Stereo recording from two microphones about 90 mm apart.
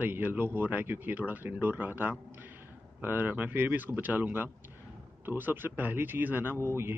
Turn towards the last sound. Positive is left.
turn(degrees=-30)  # may be behind; listen again after turning